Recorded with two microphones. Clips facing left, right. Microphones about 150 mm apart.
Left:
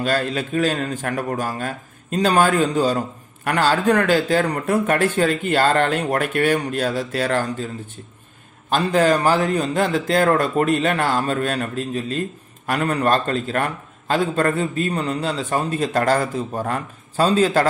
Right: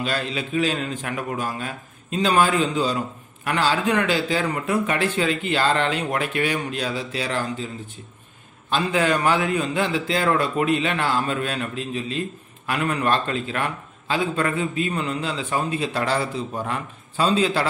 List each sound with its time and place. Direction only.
0.0 s a man's voice: 45° left (ahead or behind)